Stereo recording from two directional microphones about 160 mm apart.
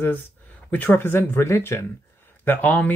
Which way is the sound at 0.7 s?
10° left (ahead or behind).